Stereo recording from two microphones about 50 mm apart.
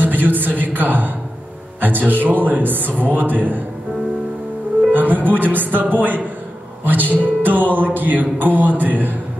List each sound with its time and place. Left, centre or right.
0.0 s a sound: right
1.8 s music: right
4.9 s music: right